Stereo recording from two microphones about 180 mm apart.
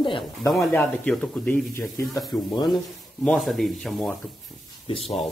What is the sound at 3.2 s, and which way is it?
Speech, centre (ahead or behind).